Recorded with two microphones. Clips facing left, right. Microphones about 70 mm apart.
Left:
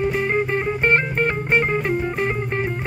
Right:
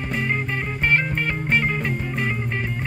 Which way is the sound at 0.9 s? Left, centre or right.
Left.